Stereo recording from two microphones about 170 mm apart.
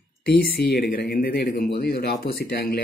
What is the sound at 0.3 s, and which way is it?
Speech, 70° left (ahead or behind).